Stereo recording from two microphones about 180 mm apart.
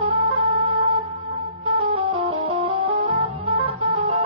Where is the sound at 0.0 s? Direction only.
30° right (ahead or behind).